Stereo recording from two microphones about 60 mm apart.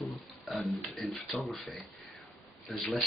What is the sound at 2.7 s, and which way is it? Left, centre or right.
Speech, centre.